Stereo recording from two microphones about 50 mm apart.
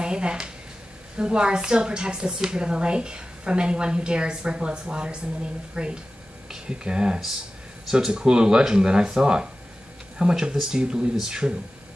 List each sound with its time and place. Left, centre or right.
0.0 s speech: centre